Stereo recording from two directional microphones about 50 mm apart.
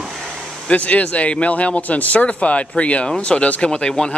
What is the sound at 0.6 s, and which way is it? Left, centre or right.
Speech, left.